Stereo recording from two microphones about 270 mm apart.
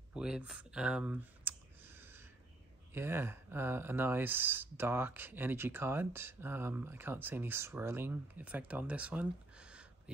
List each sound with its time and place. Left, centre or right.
0.1 s computer keyboard: centre
2.9 s speech: centre